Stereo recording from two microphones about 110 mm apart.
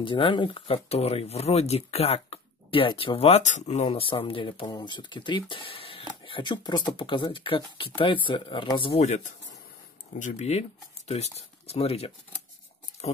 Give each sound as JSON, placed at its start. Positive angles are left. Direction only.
{"t": 0.0, "sound": "speech", "side_deg": 50}
{"t": 3.2, "sound": "speech", "side_deg": 75}
{"t": 4.0, "sound": "speech", "side_deg": 55}
{"t": 9.0, "sound": "speech", "side_deg": 90}
{"t": 10.3, "sound": "speech", "side_deg": 80}